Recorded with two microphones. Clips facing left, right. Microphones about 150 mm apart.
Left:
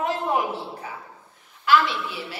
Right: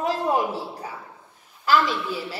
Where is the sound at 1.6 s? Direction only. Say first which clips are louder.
Even; 40° right (ahead or behind).